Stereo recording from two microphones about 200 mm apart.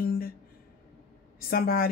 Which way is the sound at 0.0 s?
50° left (ahead or behind).